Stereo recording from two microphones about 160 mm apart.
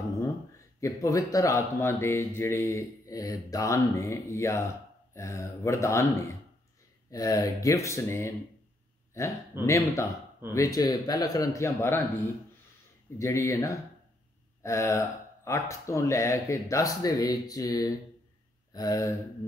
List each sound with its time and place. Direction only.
0.7 s speech: 20° left (ahead or behind)
13.2 s speech: 15° left (ahead or behind)
18.7 s a sound: 25° left (ahead or behind)